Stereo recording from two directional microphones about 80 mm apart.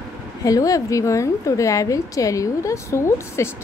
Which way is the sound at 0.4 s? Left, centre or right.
Left.